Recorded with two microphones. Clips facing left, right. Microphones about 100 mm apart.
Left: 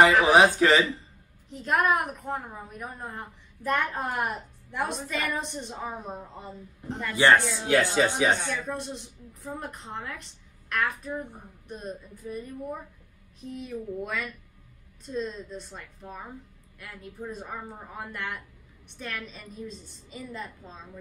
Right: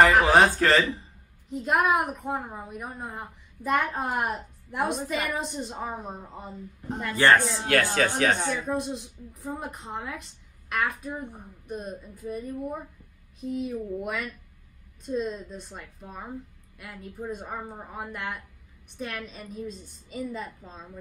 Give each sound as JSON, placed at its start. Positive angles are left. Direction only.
{"t": 0.2, "sound": "speech", "side_deg": 10}
{"t": 1.5, "sound": "a woman's voice", "side_deg": 0}
{"t": 6.9, "sound": "speech", "side_deg": -15}
{"t": 7.2, "sound": "speech", "side_deg": 15}
{"t": 8.4, "sound": "speech", "side_deg": -15}
{"t": 8.6, "sound": "a woman's voice", "side_deg": -5}
{"t": 13.4, "sound": "a woman's voice", "side_deg": 0}
{"t": 17.3, "sound": "a woman's voice", "side_deg": 0}